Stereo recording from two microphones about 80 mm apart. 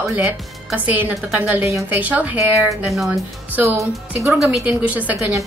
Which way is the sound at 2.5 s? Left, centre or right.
Right.